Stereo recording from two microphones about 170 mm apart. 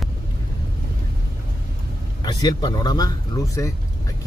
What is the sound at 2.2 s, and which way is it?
Speech, 25° left (ahead or behind).